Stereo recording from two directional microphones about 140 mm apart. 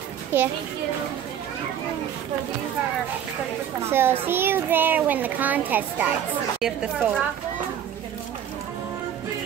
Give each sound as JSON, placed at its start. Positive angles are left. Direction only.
{"t": 0.3, "sound": "a child's voice", "side_deg": -15}
{"t": 3.8, "sound": "a child's voice", "side_deg": -15}